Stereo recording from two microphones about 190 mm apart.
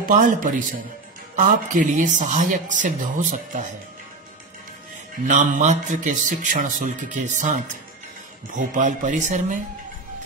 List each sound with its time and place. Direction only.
0.1 s speech: 40° right (ahead or behind)
5.2 s speech: 40° right (ahead or behind)